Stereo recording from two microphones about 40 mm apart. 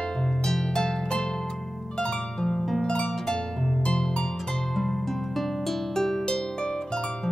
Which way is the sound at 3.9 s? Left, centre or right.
Centre.